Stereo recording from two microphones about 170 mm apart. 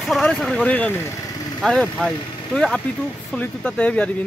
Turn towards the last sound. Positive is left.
turn(degrees=5)  # may be behind; listen again after turning